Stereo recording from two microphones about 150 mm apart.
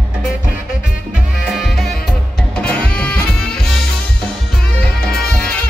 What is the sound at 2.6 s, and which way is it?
Music, 10° left (ahead or behind).